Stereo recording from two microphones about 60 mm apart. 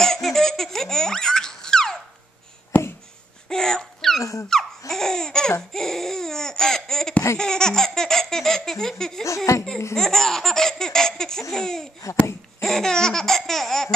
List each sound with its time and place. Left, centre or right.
0.0 s laughter: centre
2.7 s a sound: left
3.4 s a sound: centre
4.5 s laughter: centre
9.5 s speech: left
9.9 s laughter: centre
11.5 s speech: centre
12.0 s a sound: left
12.5 s laughter: centre